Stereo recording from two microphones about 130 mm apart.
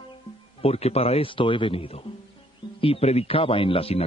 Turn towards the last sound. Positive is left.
turn(degrees=50)  # may be behind; listen again after turning